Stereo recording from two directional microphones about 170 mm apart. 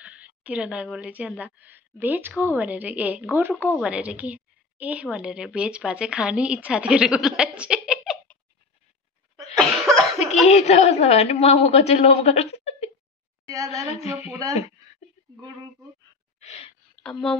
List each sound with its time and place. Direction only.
0.0 s a woman's voice: 10° right (ahead or behind)
9.6 s cough: centre (ahead or behind)
10.1 s a woman's voice: 40° left (ahead or behind)
16.3 s gasp: 40° left (ahead or behind)
17.0 s speech: 5° left (ahead or behind)